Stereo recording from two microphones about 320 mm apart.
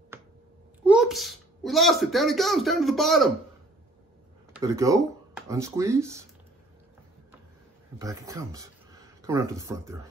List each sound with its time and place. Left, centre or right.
0.8 s a child's voice: centre
4.6 s speech: centre
8.0 s speech: centre